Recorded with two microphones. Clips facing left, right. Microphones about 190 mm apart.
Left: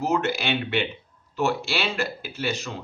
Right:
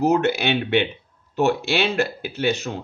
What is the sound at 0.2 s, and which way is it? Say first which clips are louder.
Speech: right 5 dB; 60° right (ahead or behind).